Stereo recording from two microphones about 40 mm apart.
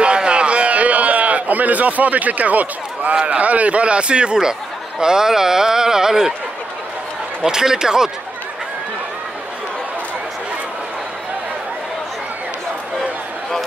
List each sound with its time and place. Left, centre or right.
0.0 s a sound: right
3.3 s speech: right; by 6.3 s centre
7.4 s speech: centre